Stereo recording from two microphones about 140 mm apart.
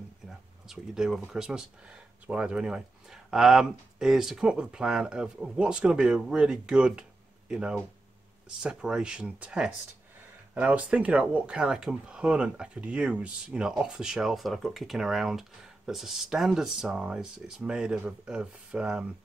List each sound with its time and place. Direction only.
0.7 s speech: 5° right (ahead or behind)